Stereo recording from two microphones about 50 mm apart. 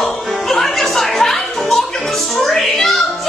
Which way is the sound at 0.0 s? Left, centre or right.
Centre.